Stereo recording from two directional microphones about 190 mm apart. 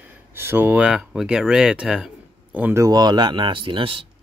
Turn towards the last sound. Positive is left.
turn(degrees=-30)  # may be behind; listen again after turning